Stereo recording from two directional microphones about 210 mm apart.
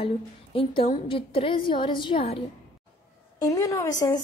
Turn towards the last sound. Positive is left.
turn(degrees=15)  # may be behind; listen again after turning